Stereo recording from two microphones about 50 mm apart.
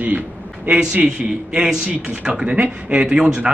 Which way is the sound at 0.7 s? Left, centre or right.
Centre.